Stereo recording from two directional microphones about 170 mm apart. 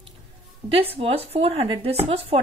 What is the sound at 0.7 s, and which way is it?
A woman's voice, 35° right (ahead or behind).